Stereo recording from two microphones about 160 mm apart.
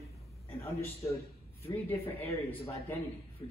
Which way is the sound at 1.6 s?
10° left (ahead or behind).